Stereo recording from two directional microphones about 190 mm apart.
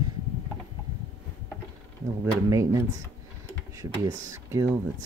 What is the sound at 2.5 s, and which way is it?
Speech, 15° right (ahead or behind).